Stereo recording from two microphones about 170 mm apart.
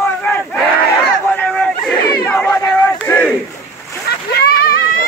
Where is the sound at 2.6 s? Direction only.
10° left (ahead or behind).